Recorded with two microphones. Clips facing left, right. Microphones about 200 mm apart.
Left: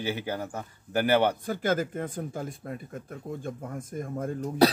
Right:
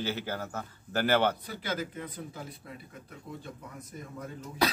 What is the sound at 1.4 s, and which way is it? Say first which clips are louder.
Speech: left 8 dB; 50° left (ahead or behind).